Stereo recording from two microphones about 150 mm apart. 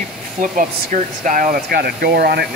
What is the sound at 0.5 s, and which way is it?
Speech, 60° right (ahead or behind).